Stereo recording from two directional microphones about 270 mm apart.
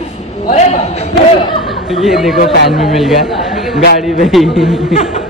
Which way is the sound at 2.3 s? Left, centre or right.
Left.